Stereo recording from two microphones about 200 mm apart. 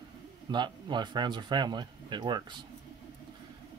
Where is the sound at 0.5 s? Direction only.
20° right (ahead or behind).